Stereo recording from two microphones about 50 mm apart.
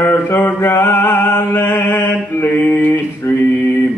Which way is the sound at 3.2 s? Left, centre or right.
Left.